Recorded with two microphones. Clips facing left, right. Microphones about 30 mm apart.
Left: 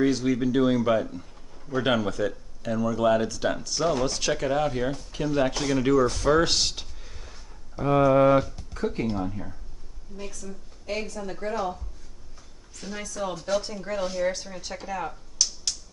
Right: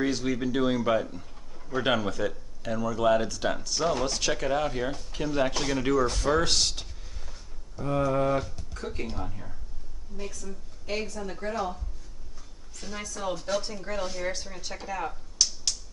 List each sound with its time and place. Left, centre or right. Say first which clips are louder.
0.0 s speech: left 4 dB; centre
7.7 s speech: left 7 dB; left
8.5 s speech: left 7 dB; centre